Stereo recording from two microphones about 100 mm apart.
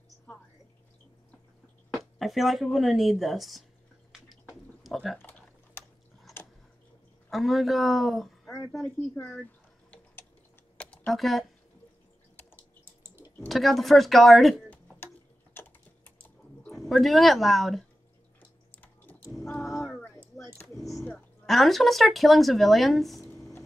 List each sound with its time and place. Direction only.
2.1 s speech: centre (ahead or behind)
4.8 s speech: centre (ahead or behind)
7.2 s a woman's voice: centre (ahead or behind)
9.4 s drip: 15° left (ahead or behind)
10.8 s computer keyboard: 10° left (ahead or behind)
11.1 s speech: centre (ahead or behind)
12.8 s water: 20° right (ahead or behind)
13.5 s speech: centre (ahead or behind)
16.9 s speech: centre (ahead or behind)
21.5 s speech: centre (ahead or behind)
23.2 s a sound: 30° left (ahead or behind)